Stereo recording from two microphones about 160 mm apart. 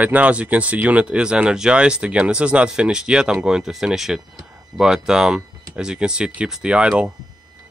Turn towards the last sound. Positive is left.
turn(degrees=-5)  # may be behind; listen again after turning